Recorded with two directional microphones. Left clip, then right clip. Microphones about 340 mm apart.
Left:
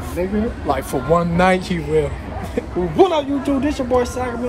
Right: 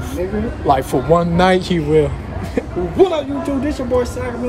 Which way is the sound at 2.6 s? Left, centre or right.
Centre.